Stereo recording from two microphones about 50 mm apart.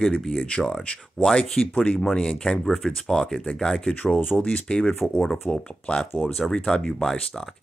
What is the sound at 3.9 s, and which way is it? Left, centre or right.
Speech, left.